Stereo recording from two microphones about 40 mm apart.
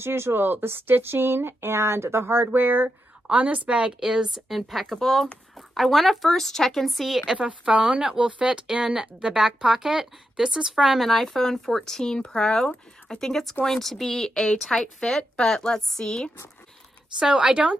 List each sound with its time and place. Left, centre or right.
0.0 s speech: right
3.3 s speech: right
4.0 s speech: centre
6.9 s speech: centre
7.3 s speech: right
10.7 s speech: centre
13.3 s speech: centre
17.2 s speech: right